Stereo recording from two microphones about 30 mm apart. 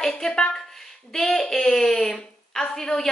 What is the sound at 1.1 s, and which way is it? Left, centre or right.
A woman's voice, centre.